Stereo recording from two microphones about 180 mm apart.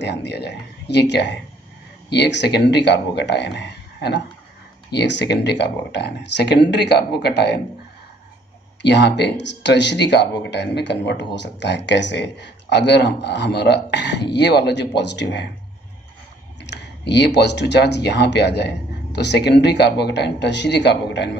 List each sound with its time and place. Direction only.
0.0 s speech: 70° left (ahead or behind)
8.8 s speech: 70° left (ahead or behind)
16.6 s speech: 70° left (ahead or behind)